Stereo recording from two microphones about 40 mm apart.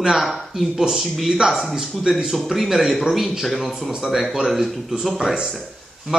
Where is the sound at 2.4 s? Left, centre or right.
Centre.